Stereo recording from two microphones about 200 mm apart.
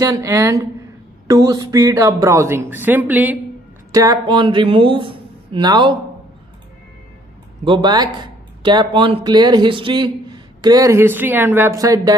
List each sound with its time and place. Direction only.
0.0 s speech: 15° right (ahead or behind)
3.9 s speech: 20° right (ahead or behind)
7.6 s speech: 25° right (ahead or behind)